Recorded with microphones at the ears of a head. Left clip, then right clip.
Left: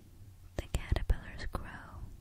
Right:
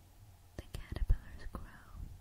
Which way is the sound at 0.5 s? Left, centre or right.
Left.